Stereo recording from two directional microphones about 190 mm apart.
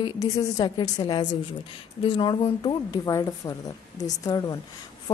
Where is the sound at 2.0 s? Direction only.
25° left (ahead or behind).